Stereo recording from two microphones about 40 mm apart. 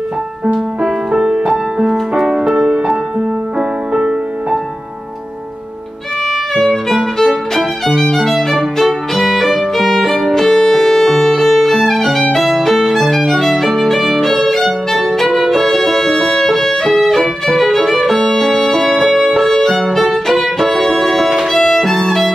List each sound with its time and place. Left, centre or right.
0.8 s music: centre
3.9 s music: centre
6.5 s music: centre
7.2 s violin: centre
10.3 s music: centre
12.4 s violin: centre
20.6 s music: centre
21.5 s violin: centre